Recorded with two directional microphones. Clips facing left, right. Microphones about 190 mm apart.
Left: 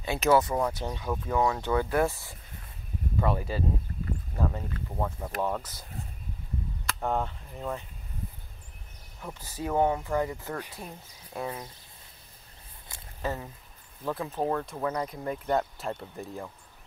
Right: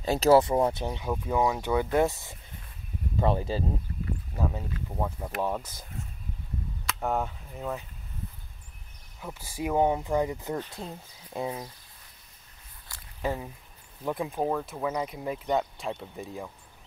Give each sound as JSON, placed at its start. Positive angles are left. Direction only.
{"t": 0.0, "sound": "speech", "side_deg": -35}
{"t": 0.8, "sound": "speech", "side_deg": -15}
{"t": 4.4, "sound": "a sound", "side_deg": -10}
{"t": 4.9, "sound": "speech", "side_deg": -5}
{"t": 6.9, "sound": "speech", "side_deg": -5}
{"t": 9.2, "sound": "speech", "side_deg": -10}
{"t": 13.2, "sound": "speech", "side_deg": -15}
{"t": 15.5, "sound": "speech", "side_deg": 0}